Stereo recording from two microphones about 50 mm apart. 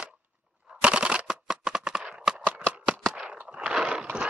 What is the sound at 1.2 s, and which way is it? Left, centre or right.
Shuffling cards, centre.